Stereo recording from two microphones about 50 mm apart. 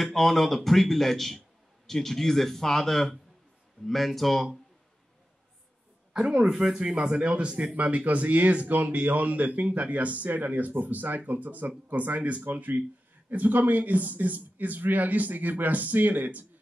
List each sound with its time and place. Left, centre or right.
0.0 s speech: centre
6.1 s speech: centre; by 16.4 s right